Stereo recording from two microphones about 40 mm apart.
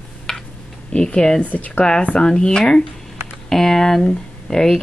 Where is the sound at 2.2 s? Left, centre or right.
Centre.